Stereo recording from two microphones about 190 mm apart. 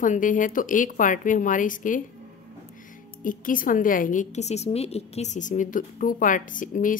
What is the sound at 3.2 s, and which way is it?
A woman's voice, 45° left (ahead or behind).